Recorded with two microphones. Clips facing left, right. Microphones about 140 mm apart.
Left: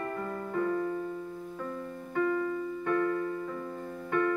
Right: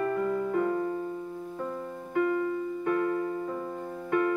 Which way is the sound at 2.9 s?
20° right (ahead or behind).